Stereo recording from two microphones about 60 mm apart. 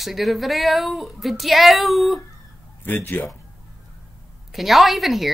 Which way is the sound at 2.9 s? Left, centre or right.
Left.